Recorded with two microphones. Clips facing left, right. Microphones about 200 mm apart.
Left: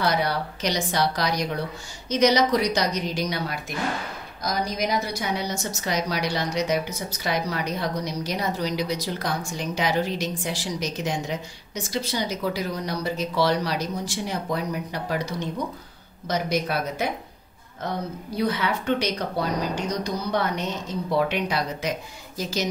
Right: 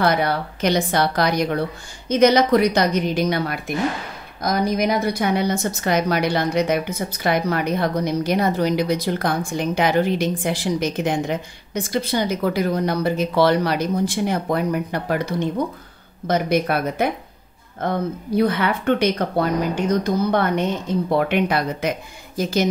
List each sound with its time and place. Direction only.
0.0 s a woman's voice: 55° right (ahead or behind)